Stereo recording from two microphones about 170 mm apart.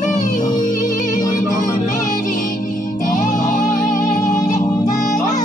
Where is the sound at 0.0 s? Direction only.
50° left (ahead or behind).